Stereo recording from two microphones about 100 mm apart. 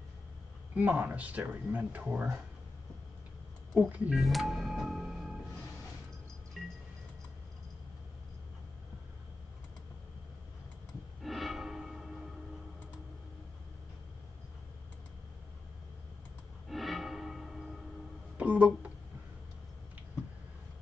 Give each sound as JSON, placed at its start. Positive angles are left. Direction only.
{"t": 0.7, "sound": "speech", "side_deg": -15}
{"t": 3.7, "sound": "speech", "side_deg": -15}
{"t": 4.2, "sound": "music", "side_deg": 0}
{"t": 6.6, "sound": "music", "side_deg": 0}
{"t": 11.2, "sound": "a sound", "side_deg": 0}
{"t": 16.6, "sound": "music", "side_deg": 0}
{"t": 18.4, "sound": "a sound", "side_deg": -15}